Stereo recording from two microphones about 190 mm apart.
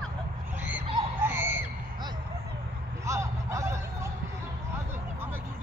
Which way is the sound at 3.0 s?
15° right (ahead or behind).